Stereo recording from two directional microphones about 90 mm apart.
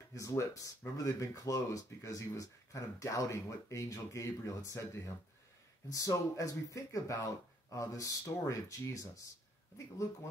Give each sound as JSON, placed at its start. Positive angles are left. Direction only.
{"t": 0.1, "sound": "speech", "side_deg": 35}